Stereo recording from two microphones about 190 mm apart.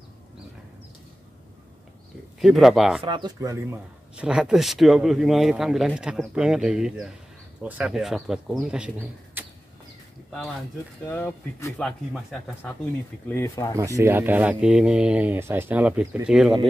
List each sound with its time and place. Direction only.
2.4 s speech: centre (ahead or behind)
3.0 s speech: 25° right (ahead or behind)
4.2 s speech: 5° right (ahead or behind)
9.4 s a sound: 10° right (ahead or behind)
11.1 s speech: 10° left (ahead or behind)
12.1 s speech: centre (ahead or behind)
13.3 s speech: 15° left (ahead or behind)
13.7 s speech: 15° right (ahead or behind)